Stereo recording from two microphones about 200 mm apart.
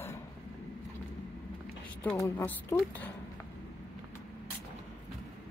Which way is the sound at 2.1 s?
15° left (ahead or behind).